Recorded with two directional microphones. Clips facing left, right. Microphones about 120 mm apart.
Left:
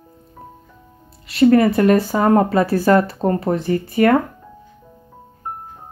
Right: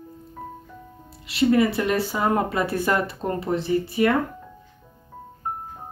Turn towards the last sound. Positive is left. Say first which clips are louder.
# left 5 dB
turn(degrees=55)  # may be behind; listen again after turning